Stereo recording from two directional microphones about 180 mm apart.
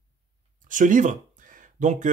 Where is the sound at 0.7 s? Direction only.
45° right (ahead or behind).